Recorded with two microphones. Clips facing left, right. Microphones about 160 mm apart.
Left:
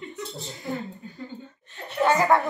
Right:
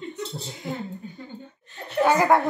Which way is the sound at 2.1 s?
15° right (ahead or behind).